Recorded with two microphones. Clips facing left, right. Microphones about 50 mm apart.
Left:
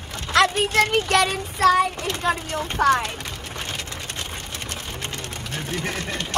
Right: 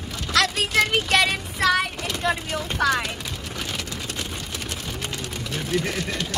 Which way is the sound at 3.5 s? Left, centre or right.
Left.